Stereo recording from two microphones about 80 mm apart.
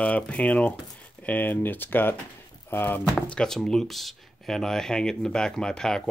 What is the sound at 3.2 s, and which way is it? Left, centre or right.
Speech, centre.